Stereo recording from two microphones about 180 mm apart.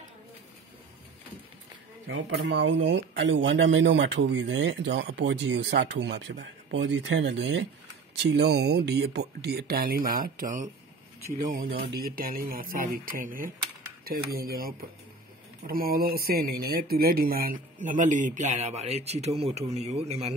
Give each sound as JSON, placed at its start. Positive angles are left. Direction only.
{"t": 2.0, "sound": "speech", "side_deg": -85}
{"t": 11.8, "sound": "speech", "side_deg": -55}